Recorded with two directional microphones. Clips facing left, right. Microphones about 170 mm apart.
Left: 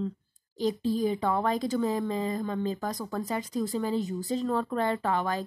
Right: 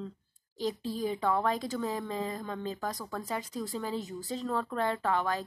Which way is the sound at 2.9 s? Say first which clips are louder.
Left 5 dB; 20° left (ahead or behind).